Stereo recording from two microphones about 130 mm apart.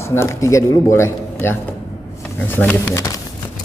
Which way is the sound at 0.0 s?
20° left (ahead or behind).